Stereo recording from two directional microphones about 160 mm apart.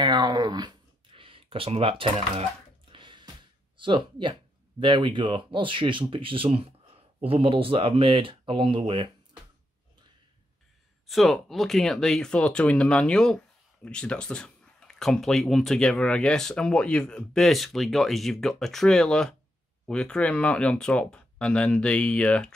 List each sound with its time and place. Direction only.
0.0 s a sound: 25° right (ahead or behind)
3.7 s speech: 30° right (ahead or behind)
11.1 s speech: centre (ahead or behind)